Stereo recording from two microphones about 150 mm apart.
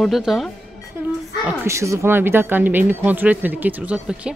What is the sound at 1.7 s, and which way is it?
Speech, 20° right (ahead or behind).